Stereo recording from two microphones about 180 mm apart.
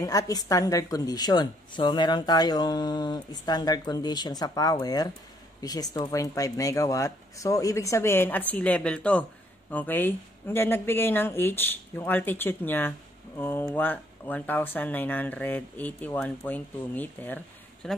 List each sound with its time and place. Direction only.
0.0 s a woman's voice: 20° left (ahead or behind); by 18.0 s centre (ahead or behind)